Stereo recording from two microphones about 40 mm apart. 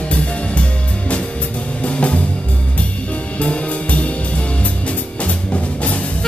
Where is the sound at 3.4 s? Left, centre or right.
Left.